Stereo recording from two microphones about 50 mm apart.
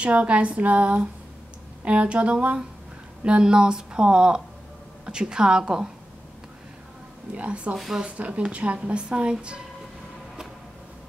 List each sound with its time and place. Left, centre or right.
0.0 s speech: right
7.3 s speech: right
7.7 s speech: centre
8.2 s speech: right